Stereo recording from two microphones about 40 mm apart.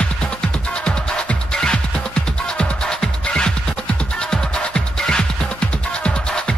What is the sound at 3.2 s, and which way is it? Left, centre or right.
Music, left.